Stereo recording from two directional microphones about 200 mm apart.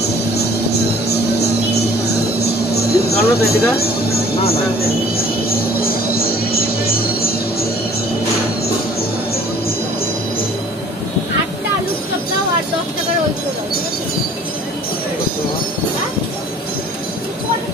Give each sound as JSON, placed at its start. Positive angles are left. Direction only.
{"t": 0.7, "sound": "music", "side_deg": 55}
{"t": 2.7, "sound": "speech", "side_deg": 50}
{"t": 5.1, "sound": "music", "side_deg": 50}